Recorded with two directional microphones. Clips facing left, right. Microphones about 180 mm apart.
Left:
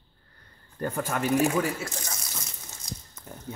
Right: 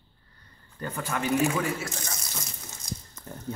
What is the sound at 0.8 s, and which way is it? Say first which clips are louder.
Speech: left 3 dB; 45° left (ahead or behind).